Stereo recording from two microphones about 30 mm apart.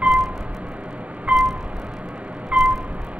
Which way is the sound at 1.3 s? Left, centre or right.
Centre.